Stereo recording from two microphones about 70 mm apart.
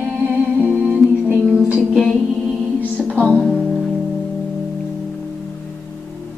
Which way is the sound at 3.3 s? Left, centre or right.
Centre.